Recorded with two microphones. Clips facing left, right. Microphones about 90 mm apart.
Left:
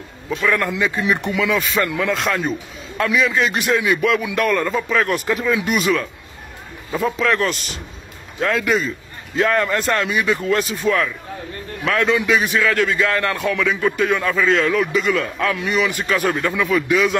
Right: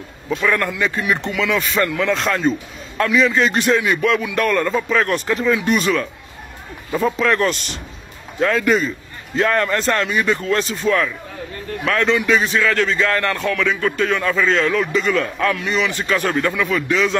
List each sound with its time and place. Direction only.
0.3 s speech: centre (ahead or behind)
0.7 s speech: 15° left (ahead or behind)
1.6 s speech: centre (ahead or behind)
1.9 s speech: 15° left (ahead or behind)
2.1 s a man's voice: centre (ahead or behind)
15.5 s speech: 15° left (ahead or behind)